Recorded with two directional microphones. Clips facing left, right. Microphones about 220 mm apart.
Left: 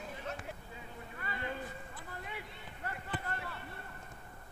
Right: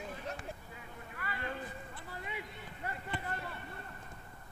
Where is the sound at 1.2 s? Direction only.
25° left (ahead or behind).